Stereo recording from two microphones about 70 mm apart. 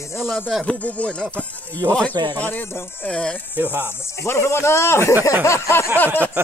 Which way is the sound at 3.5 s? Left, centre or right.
Right.